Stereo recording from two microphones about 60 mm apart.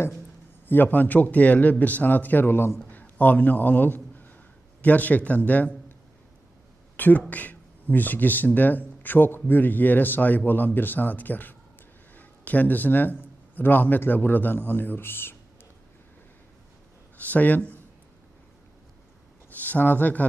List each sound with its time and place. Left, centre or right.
0.7 s a man's voice: left
2.9 s a sound: left
4.8 s a man's voice: left
7.0 s a man's voice: left
17.2 s speech: left
19.5 s speech: left